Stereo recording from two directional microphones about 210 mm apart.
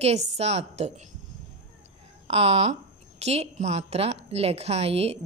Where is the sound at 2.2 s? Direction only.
30° right (ahead or behind).